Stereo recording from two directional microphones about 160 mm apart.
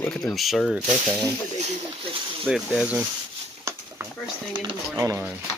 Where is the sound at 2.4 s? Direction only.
5° right (ahead or behind).